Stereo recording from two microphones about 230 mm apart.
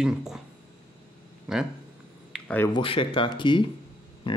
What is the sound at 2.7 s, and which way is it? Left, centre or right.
Speech, left.